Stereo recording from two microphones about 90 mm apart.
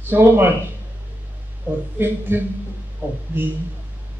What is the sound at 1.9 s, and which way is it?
A man's voice, 25° right (ahead or behind).